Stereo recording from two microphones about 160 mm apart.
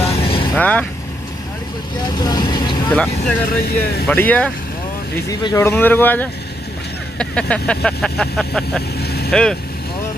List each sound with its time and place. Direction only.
0.1 s vehicle: 35° left (ahead or behind)
0.6 s speech: 10° left (ahead or behind)
2.0 s vehicle: 25° left (ahead or behind)
3.4 s speech: 70° left (ahead or behind)
4.1 s speech: 10° left (ahead or behind)
5.3 s speech: 20° left (ahead or behind); by 8.8 s centre (ahead or behind)
8.9 s vehicle: 80° left
9.3 s speech: 5° left (ahead or behind)